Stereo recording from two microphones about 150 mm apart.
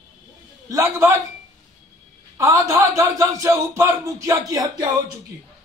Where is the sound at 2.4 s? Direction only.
20° right (ahead or behind).